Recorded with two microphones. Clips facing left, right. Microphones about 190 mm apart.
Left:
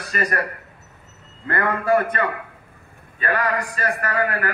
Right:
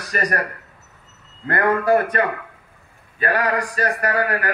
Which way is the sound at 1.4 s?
35° right (ahead or behind).